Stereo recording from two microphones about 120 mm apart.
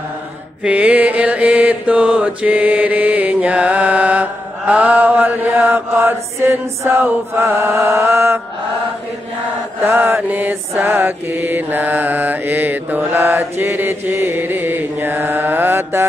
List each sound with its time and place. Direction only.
0.7 s mantra: 10° right (ahead or behind)
9.8 s mantra: 20° right (ahead or behind)